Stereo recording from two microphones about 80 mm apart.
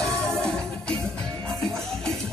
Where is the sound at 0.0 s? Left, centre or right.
Centre.